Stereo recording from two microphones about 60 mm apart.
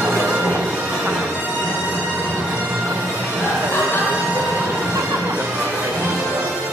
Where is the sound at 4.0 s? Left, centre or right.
Right.